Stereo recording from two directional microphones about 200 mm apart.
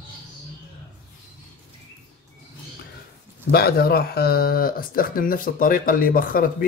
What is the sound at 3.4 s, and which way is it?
Speech, 50° left (ahead or behind).